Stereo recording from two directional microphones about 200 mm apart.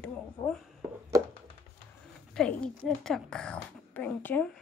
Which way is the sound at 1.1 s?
15° right (ahead or behind).